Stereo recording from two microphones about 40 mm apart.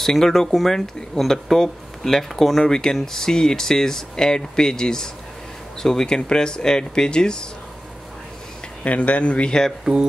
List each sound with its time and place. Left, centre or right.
0.0 s speech: centre
8.8 s speech: left
9.9 s speech: centre